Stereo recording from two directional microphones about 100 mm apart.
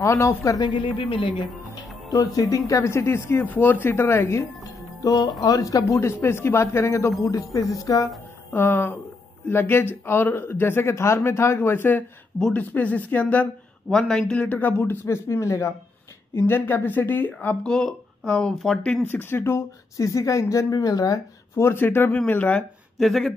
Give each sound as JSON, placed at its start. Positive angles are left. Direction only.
{"t": 0.0, "sound": "speech", "side_deg": 30}
{"t": 0.6, "sound": "speech", "side_deg": 50}
{"t": 0.9, "sound": "speech", "side_deg": 60}
{"t": 2.0, "sound": "speech", "side_deg": 40}
{"t": 8.5, "sound": "speech", "side_deg": 20}
{"t": 19.0, "sound": "speech", "side_deg": 20}
{"t": 22.9, "sound": "speech", "side_deg": 0}